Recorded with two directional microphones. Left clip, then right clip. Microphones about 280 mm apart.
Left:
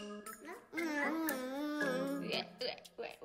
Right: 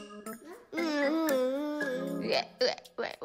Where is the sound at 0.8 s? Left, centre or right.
Right.